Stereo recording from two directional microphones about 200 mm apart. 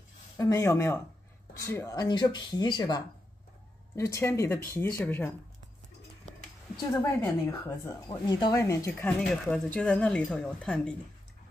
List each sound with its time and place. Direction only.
0.4 s speech: 15° left (ahead or behind)
6.9 s speech: 10° left (ahead or behind)